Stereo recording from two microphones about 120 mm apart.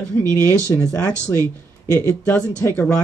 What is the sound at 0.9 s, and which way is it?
Speech, 10° left (ahead or behind).